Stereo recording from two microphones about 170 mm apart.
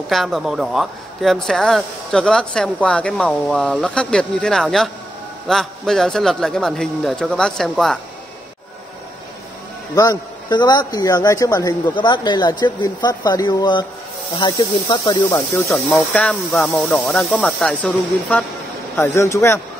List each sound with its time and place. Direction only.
0.1 s speech: centre (ahead or behind)
9.9 s speech: 25° left (ahead or behind)
15.2 s speech: 10° left (ahead or behind)
18.9 s speech: 15° left (ahead or behind)